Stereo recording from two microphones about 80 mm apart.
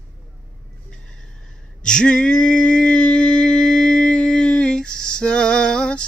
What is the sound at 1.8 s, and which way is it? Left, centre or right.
Male singing, centre.